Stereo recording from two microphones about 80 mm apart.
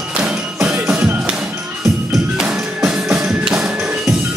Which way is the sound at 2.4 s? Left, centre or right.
Centre.